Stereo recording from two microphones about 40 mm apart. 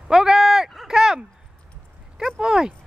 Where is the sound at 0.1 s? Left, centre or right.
Centre.